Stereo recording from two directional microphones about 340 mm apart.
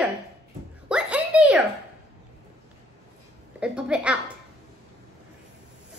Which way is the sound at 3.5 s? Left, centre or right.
Centre.